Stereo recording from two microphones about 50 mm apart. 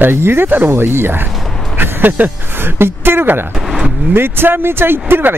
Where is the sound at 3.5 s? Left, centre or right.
Centre.